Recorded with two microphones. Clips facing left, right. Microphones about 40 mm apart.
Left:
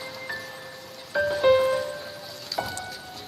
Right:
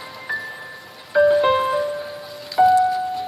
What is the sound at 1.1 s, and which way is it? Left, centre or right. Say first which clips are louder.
Music: right 5 dB; centre.